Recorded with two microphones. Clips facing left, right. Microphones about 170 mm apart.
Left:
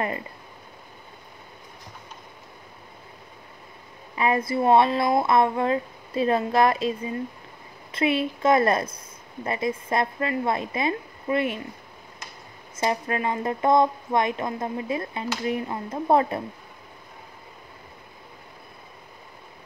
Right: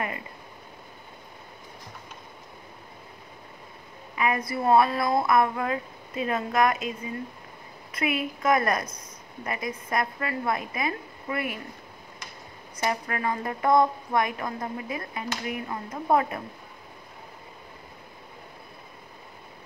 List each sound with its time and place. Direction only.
4.1 s speech: 30° left (ahead or behind)
12.7 s speech: 25° left (ahead or behind)